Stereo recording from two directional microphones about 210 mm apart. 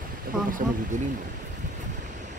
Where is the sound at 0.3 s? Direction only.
5° right (ahead or behind).